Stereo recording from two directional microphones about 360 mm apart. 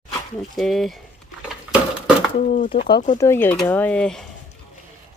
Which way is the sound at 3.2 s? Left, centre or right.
Centre.